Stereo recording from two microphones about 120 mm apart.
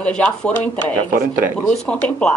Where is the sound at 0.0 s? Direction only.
10° left (ahead or behind).